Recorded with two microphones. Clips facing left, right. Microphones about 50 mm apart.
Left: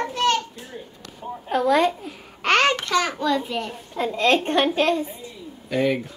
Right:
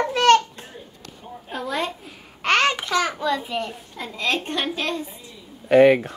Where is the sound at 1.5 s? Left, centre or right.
Left.